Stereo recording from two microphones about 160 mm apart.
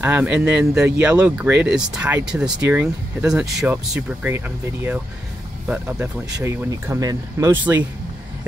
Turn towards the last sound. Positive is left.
turn(degrees=-20)  # may be behind; listen again after turning